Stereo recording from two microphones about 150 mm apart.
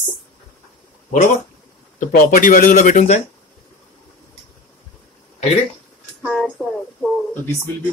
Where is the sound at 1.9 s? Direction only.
65° left (ahead or behind).